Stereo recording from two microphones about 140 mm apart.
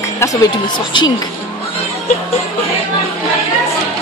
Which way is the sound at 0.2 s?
25° left (ahead or behind).